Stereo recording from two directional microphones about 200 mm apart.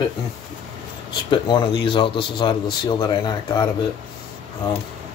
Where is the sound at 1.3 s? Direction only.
25° left (ahead or behind).